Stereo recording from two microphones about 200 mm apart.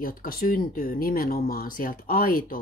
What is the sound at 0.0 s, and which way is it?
Speech, 45° left (ahead or behind).